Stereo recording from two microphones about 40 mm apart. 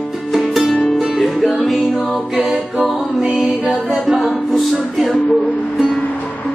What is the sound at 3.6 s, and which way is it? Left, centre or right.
Music, right.